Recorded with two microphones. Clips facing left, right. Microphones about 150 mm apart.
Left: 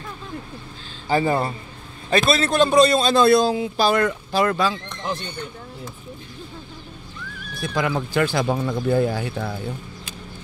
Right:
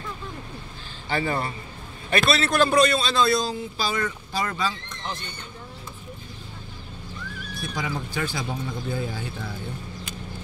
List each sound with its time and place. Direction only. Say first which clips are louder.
1.0 s a man's voice: left 6 dB; 35° left (ahead or behind)
2.5 s a man's voice: left 4 dB; 20° left (ahead or behind)
2.9 s speech: left 6 dB; 45° left (ahead or behind); by 5.1 s 60° left (ahead or behind)
7.6 s speech: left 7 dB; 75° left (ahead or behind)